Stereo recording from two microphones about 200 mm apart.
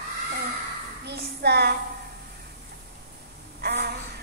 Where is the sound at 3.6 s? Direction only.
55° right (ahead or behind).